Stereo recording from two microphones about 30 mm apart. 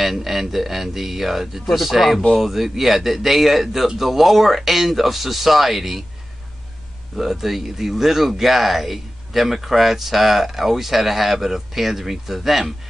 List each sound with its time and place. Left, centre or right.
0.0 s speech: centre
7.2 s speech: centre